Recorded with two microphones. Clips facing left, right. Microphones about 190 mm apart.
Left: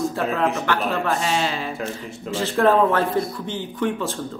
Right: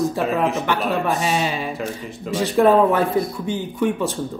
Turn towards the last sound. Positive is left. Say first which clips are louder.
# right 3 dB
turn(degrees=-15)  # may be behind; listen again after turning